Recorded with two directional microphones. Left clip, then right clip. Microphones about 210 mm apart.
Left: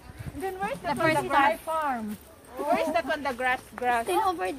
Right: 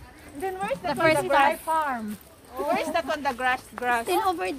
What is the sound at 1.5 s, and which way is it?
Speech, 35° right (ahead or behind).